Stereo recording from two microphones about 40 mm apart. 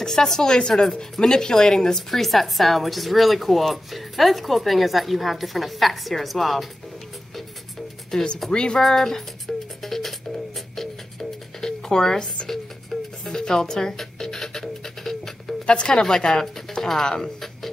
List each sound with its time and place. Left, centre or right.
0.0 s a woman's voice: centre
8.1 s speech: left
8.7 s speech: centre
9.5 s music: left
9.8 s music: centre
15.6 s a woman's voice: left